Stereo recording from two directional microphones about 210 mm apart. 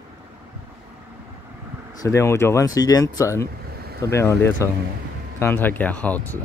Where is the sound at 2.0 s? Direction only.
15° left (ahead or behind).